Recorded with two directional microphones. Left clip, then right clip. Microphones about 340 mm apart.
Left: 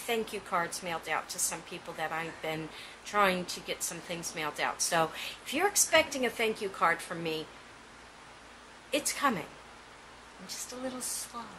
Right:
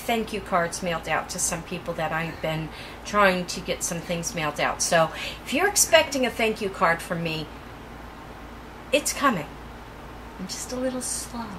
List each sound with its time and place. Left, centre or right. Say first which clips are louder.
0.0 s a woman's voice: right 7 dB; centre
8.9 s a woman's voice: right 8 dB; centre
10.4 s a woman's voice: right 10 dB; centre